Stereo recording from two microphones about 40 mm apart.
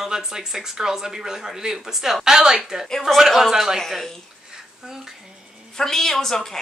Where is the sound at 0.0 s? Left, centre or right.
Centre.